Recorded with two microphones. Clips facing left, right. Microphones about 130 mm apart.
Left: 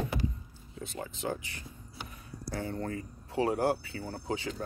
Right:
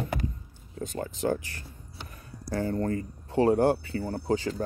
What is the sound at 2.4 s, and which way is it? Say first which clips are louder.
Speech: right 7 dB; 40° right (ahead or behind).